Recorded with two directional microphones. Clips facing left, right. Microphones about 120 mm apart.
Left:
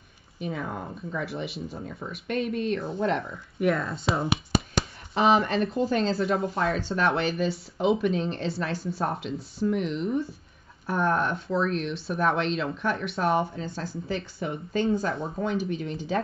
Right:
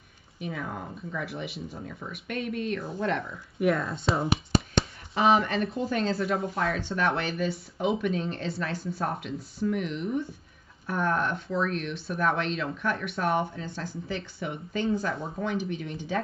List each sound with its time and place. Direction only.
0.5 s speech: 25° left (ahead or behind)
3.5 s speech: centre (ahead or behind)
5.1 s speech: 30° left (ahead or behind)